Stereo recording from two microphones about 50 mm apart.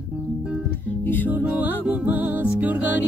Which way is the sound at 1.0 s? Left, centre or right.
Left.